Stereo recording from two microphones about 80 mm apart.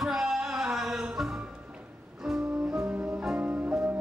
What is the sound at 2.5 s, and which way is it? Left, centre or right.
Music, centre.